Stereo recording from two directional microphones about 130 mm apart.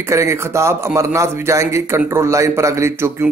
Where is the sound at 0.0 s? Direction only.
20° right (ahead or behind).